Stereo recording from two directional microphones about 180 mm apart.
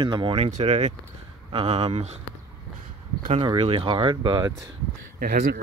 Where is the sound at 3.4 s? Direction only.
30° right (ahead or behind).